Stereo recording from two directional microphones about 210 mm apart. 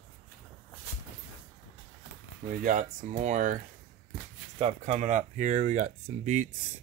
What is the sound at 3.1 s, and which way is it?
Speech, 35° right (ahead or behind).